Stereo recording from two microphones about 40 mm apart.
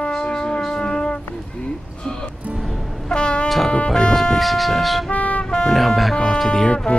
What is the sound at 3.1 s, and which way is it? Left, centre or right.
Music, left.